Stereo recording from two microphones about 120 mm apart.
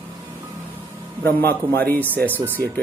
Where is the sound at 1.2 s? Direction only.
15° left (ahead or behind).